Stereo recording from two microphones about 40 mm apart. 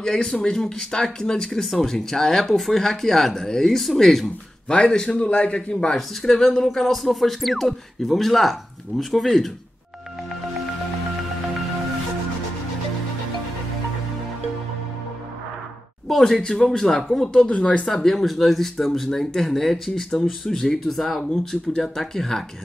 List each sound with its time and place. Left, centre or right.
0.0 s speech: centre
4.6 s a man's voice: left
5.9 s speech: centre
16.1 s speech: centre
17.5 s a man's voice: left
17.8 s speech: centre